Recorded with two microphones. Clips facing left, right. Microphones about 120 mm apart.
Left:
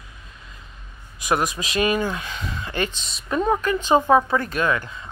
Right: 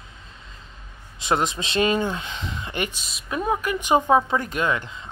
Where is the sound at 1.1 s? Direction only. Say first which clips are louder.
Even; 25° right (ahead or behind).